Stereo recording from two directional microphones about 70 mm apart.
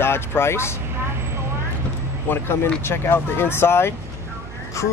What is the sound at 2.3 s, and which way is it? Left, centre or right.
Speech, left.